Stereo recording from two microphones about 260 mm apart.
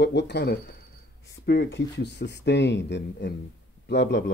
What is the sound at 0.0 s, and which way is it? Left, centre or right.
Speech, left.